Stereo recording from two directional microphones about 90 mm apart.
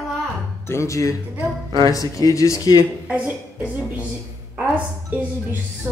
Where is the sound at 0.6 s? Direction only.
30° left (ahead or behind).